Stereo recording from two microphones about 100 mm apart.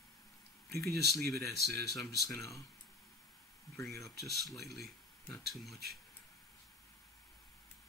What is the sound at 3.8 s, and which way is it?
Speech, 30° left (ahead or behind).